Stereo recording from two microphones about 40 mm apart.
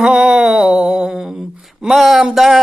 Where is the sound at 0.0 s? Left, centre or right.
Centre.